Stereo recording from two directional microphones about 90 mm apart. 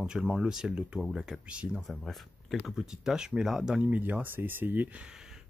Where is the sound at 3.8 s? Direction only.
20° right (ahead or behind).